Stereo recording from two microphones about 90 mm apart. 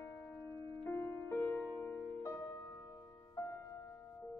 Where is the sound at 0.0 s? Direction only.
35° left (ahead or behind).